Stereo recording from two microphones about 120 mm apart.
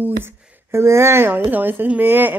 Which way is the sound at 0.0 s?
20° right (ahead or behind).